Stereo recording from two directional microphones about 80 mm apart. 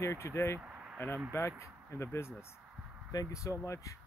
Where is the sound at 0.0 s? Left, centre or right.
Left.